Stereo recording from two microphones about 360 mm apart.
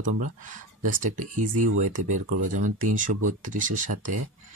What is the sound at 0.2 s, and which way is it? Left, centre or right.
Speech, right.